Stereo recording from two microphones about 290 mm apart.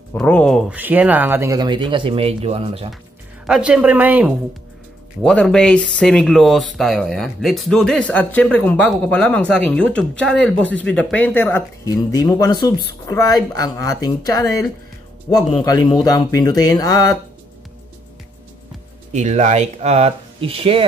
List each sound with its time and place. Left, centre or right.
0.1 s speech: centre
3.4 s speech: centre
19.1 s speech: right